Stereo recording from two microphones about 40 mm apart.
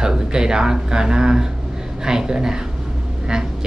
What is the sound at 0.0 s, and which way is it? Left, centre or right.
Speech, centre.